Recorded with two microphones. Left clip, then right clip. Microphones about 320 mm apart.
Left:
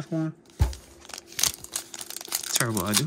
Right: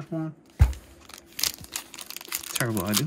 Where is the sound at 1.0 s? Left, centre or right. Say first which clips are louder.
Left 5 dB; centre.